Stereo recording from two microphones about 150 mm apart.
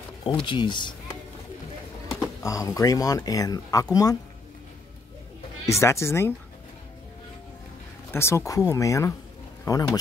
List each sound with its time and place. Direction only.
0.2 s speech: 30° left (ahead or behind)
2.1 s speech: 20° left (ahead or behind)
5.7 s speech: 20° left (ahead or behind)
8.1 s speech: 15° left (ahead or behind)